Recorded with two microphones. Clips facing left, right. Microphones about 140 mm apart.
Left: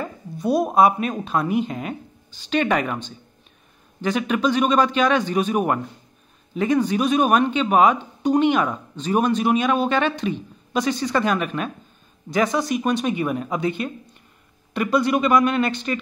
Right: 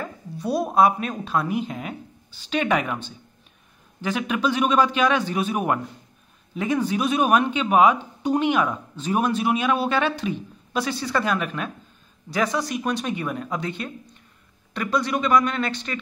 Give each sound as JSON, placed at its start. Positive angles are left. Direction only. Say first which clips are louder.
{"t": 0.0, "sound": "a man's voice", "louder": "left 4 dB", "side_deg": 0}